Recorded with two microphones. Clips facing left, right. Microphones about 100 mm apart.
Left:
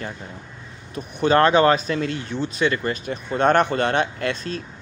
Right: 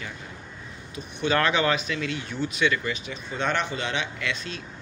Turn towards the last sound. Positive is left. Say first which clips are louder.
# left 6 dB
turn(degrees=40)  # may be behind; listen again after turning